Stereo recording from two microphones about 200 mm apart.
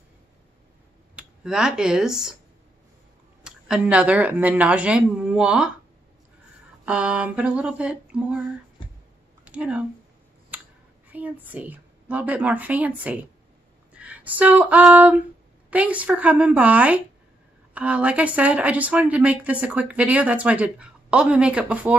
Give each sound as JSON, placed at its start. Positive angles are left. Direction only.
{"t": 1.1, "sound": "speech", "side_deg": -5}
{"t": 3.4, "sound": "speech", "side_deg": -5}
{"t": 6.9, "sound": "speech", "side_deg": -5}
{"t": 8.8, "sound": "a sound", "side_deg": 25}
{"t": 9.4, "sound": "speech", "side_deg": -5}
{"t": 10.5, "sound": "a sound", "side_deg": -10}
{"t": 11.1, "sound": "speech", "side_deg": -10}
{"t": 13.9, "sound": "a sound", "side_deg": -5}
{"t": 15.7, "sound": "speech", "side_deg": -5}